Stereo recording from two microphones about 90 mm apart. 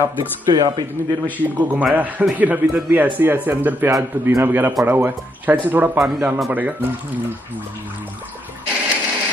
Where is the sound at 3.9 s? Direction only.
30° right (ahead or behind).